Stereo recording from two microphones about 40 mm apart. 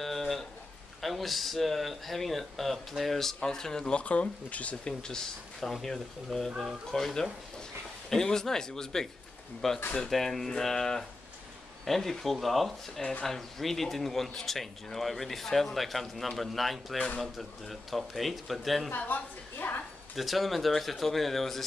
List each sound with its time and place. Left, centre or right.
0.0 s a sound: centre
1.0 s speech: centre
3.9 s speech: left
4.8 s speech: centre
5.6 s speech: centre
18.9 s a woman's voice: left
20.2 s speech: centre